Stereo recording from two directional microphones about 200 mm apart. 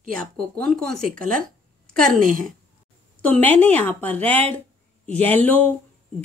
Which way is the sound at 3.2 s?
10° left (ahead or behind).